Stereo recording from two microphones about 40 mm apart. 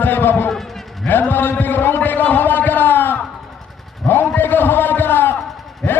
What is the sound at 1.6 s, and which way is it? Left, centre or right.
Music, left.